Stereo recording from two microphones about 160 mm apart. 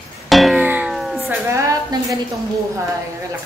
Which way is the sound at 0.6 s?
10° right (ahead or behind).